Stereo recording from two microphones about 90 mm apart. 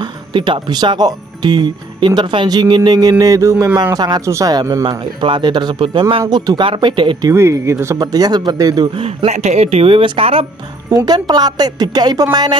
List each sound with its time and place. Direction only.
0.0 s speech: 60° right (ahead or behind); by 3.7 s 35° right (ahead or behind)
3.9 s a woman's voice: 50° right (ahead or behind)
4.8 s speech: 65° right (ahead or behind)
6.3 s a woman's voice: 50° right (ahead or behind)
6.6 s speech: 65° right (ahead or behind)
7.3 s speech: 30° right (ahead or behind)
8.0 s a woman's voice: 50° right (ahead or behind)
8.9 s a man's voice: 85° right
10.9 s a woman's voice: 45° right (ahead or behind)